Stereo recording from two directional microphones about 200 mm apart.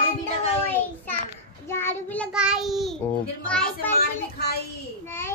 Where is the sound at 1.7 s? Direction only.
10° left (ahead or behind).